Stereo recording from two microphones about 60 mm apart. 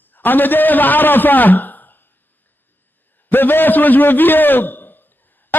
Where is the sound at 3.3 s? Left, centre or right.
Left.